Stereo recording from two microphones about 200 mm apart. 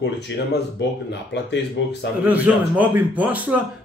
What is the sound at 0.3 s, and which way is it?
Speech, 65° left (ahead or behind).